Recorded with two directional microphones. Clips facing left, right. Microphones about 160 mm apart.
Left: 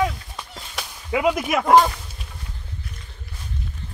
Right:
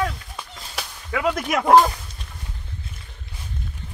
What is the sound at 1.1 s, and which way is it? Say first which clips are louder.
Speech: left 2 dB; 10° left (ahead or behind).